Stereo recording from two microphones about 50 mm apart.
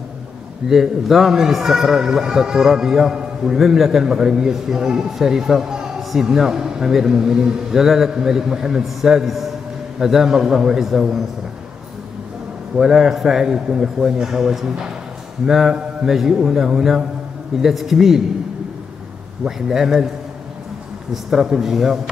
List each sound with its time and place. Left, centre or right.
0.7 s a man's voice: centre
12.7 s a man's voice: centre
19.4 s a man's voice: centre
21.1 s a man's voice: centre